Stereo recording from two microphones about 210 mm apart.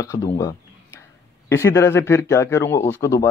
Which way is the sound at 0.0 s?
15° left (ahead or behind).